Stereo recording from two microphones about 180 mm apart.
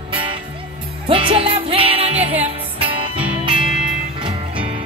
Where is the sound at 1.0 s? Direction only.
30° right (ahead or behind).